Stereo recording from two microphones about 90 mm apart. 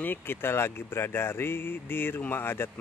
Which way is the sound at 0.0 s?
20° left (ahead or behind).